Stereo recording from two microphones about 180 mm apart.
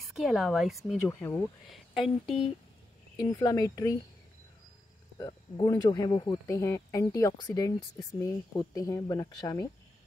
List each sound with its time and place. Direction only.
0.0 s a woman's voice: centre (ahead or behind)
1.0 s speech: 15° left (ahead or behind)
1.7 s a woman's voice: centre (ahead or behind)
3.3 s speech: 20° left (ahead or behind)
5.2 s speech: 20° left (ahead or behind)